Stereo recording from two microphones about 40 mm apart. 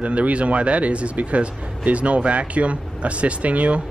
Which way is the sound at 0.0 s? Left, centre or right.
Right.